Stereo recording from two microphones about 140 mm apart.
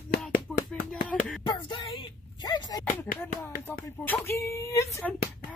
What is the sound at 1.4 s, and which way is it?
Speech, 35° left (ahead or behind).